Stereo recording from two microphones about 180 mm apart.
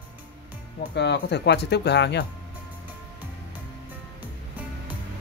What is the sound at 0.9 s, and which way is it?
Speech, 70° left (ahead or behind).